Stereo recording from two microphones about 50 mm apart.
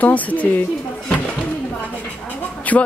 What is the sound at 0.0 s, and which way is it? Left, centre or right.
Speech, left.